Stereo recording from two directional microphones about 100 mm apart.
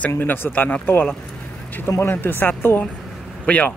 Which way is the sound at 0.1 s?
20° left (ahead or behind).